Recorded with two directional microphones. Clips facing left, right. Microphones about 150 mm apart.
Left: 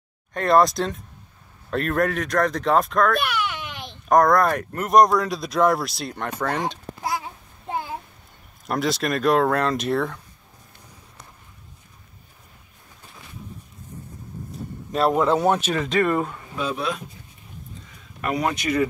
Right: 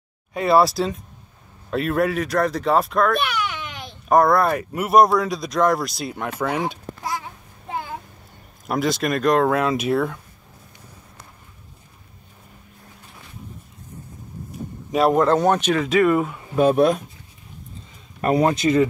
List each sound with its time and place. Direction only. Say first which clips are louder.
0.3 s speech: right 1 dB; 5° right (ahead or behind)
8.6 s speech: right 2 dB; centre (ahead or behind)
14.9 s speech: right 3 dB; 5° right (ahead or behind)
15.1 s speech: right 2 dB; 5° left (ahead or behind)
16.5 s speech: right 11 dB; 50° right (ahead or behind)
18.2 s speech: right 6 dB; 35° right (ahead or behind)